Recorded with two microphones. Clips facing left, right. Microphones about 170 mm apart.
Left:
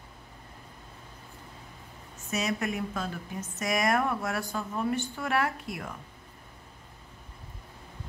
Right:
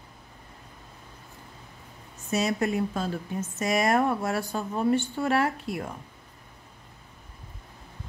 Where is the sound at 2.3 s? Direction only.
30° right (ahead or behind).